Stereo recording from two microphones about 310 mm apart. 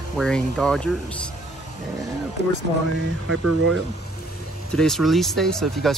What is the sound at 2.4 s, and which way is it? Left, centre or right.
Speech, left.